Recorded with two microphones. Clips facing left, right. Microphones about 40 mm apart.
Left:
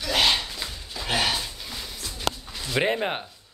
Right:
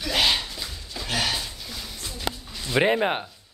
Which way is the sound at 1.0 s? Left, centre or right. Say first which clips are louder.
Left 2 dB; centre.